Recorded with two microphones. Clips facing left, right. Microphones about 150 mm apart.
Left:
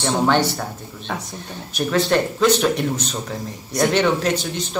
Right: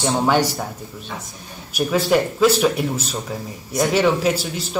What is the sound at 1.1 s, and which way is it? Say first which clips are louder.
Speech: left 6 dB; 70° left (ahead or behind).